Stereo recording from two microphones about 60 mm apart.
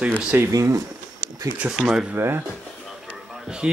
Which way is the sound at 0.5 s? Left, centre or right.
Right.